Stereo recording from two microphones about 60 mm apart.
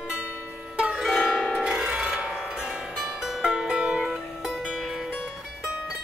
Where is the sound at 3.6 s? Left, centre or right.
Centre.